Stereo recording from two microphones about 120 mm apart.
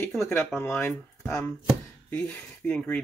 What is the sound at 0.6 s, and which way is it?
Speech, 15° left (ahead or behind).